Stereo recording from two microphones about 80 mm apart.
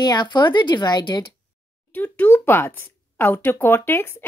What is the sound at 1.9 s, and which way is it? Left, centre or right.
Speech, left.